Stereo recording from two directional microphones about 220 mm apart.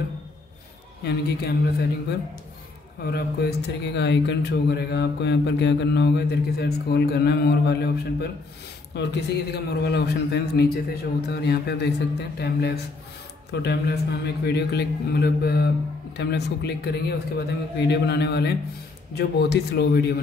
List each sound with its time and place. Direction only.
1.0 s speech: 50° left (ahead or behind)